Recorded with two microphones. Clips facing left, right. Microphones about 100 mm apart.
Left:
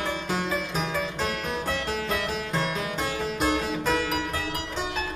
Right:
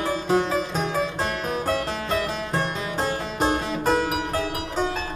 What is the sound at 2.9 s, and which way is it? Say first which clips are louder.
Music: right 3 dB; 40° right (ahead or behind).